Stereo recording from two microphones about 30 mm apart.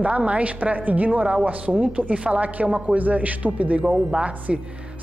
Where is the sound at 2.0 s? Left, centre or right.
Right.